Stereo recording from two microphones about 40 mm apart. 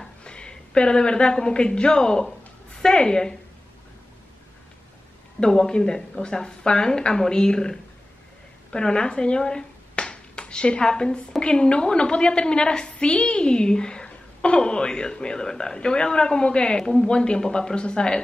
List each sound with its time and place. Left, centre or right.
0.2 s a woman's voice: left
5.4 s speech: centre